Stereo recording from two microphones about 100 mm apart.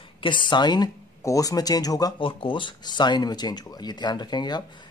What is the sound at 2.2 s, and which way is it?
Speech, 60° left (ahead or behind).